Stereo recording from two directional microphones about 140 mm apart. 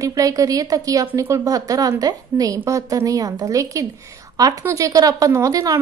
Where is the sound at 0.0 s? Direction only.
25° right (ahead or behind).